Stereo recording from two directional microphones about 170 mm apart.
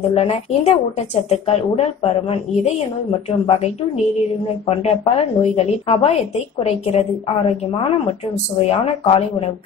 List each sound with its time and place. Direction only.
0.1 s a woman's voice: 35° left (ahead or behind)